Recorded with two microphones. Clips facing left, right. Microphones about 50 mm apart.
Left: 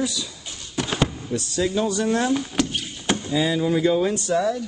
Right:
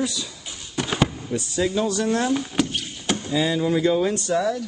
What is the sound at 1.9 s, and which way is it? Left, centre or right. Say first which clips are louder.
Speech: even; centre.